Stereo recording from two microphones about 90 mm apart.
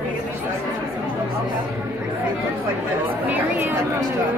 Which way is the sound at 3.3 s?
20° right (ahead or behind).